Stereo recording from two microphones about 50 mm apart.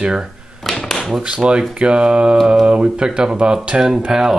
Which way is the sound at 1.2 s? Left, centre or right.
Centre.